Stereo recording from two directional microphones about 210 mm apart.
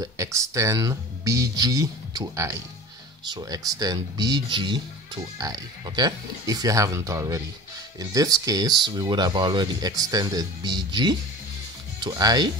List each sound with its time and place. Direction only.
0.0 s speech: 15° right (ahead or behind)